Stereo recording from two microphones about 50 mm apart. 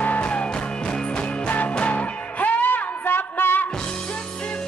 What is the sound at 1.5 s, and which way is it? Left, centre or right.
Music, left.